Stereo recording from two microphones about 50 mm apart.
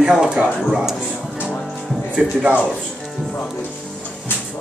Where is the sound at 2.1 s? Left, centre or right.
Right.